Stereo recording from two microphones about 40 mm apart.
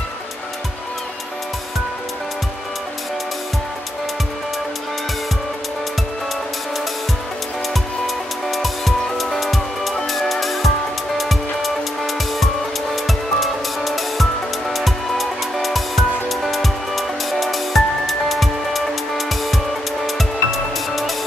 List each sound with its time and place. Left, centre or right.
8.5 s music: centre
12.9 s music: centre